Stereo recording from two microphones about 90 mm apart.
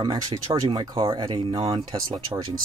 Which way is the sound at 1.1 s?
55° right (ahead or behind).